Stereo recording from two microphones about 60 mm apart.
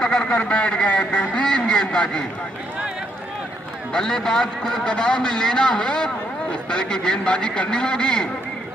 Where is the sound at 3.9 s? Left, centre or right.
Centre.